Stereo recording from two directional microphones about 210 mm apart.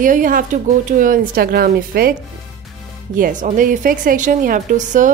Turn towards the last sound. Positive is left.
turn(degrees=-40)  # may be behind; listen again after turning